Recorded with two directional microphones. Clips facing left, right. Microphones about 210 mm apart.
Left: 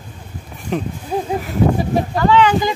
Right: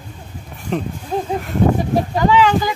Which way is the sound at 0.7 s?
Centre (ahead or behind).